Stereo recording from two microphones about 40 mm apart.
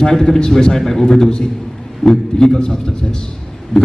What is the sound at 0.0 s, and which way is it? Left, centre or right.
A man's voice, centre.